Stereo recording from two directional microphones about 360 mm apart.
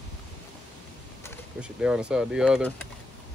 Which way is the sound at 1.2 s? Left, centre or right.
Centre.